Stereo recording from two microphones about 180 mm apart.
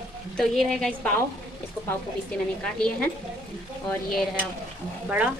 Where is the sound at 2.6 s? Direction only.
5° left (ahead or behind).